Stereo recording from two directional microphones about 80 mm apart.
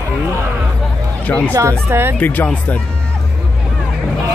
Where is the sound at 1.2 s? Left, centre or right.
Left.